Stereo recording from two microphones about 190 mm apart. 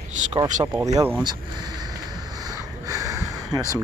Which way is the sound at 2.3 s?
20° right (ahead or behind).